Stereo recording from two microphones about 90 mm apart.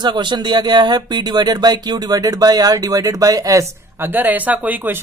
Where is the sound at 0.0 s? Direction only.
55° right (ahead or behind); by 3.6 s 40° right (ahead or behind).